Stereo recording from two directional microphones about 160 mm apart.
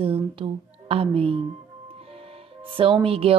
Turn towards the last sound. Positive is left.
turn(degrees=-35)  # may be behind; listen again after turning